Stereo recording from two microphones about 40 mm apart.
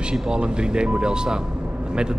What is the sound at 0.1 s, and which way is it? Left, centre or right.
Speech, right.